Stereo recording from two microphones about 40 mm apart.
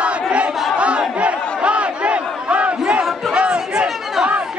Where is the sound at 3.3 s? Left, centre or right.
Right.